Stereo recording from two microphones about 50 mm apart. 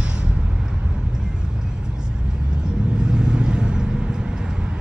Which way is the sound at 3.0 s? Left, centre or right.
Centre.